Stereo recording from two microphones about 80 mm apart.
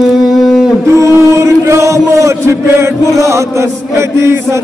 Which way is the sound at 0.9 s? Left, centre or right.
Right.